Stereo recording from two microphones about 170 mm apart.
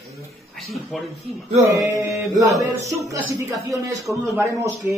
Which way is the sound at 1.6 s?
20° right (ahead or behind).